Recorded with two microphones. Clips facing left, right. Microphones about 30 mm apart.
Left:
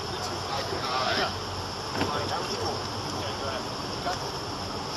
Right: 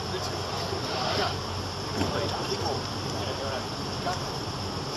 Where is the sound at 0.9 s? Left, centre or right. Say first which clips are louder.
Left 2 dB; centre.